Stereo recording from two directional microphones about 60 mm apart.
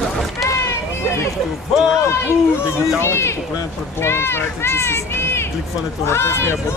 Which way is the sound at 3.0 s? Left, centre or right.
Left.